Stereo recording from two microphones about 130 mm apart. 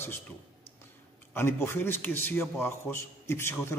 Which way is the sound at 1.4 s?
20° left (ahead or behind).